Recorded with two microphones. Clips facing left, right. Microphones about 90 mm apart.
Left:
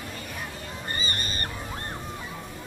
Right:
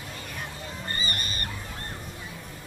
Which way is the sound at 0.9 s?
25° left (ahead or behind).